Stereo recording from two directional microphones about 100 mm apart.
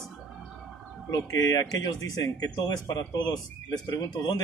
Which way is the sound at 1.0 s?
40° left (ahead or behind).